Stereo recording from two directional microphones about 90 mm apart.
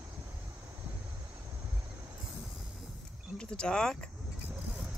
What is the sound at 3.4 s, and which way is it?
Speech, 10° left (ahead or behind).